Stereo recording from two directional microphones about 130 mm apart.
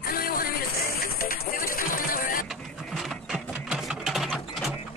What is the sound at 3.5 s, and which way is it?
Sewing machine, 5° right (ahead or behind).